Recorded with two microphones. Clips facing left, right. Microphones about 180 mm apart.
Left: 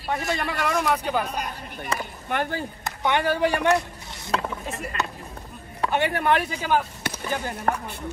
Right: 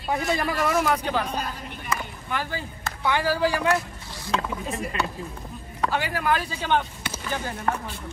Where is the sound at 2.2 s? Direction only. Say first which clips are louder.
Left 4 dB; 55° left (ahead or behind).